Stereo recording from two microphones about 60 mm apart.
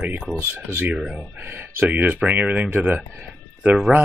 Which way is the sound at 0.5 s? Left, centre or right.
Right.